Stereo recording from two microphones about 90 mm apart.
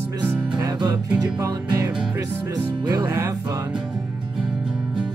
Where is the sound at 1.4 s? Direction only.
40° right (ahead or behind).